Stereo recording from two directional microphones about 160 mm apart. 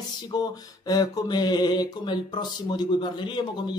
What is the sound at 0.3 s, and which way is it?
A man's voice, 25° left (ahead or behind).